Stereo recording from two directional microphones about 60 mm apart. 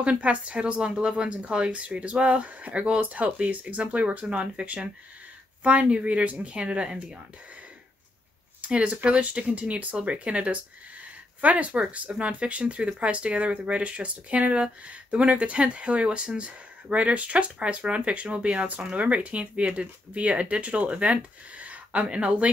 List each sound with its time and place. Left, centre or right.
0.0 s speech: centre
8.5 s speech: right